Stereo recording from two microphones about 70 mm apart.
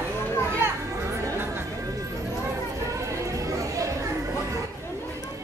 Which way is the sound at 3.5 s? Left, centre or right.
Right.